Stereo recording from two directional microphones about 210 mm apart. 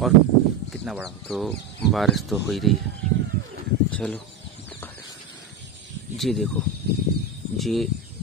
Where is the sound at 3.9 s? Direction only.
5° left (ahead or behind).